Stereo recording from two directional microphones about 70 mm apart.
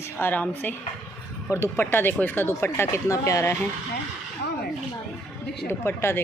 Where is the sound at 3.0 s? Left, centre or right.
Left.